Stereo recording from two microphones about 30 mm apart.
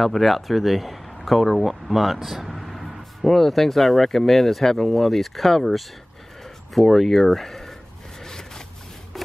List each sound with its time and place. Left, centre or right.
0.0 s speech: centre
8.2 s zipper: centre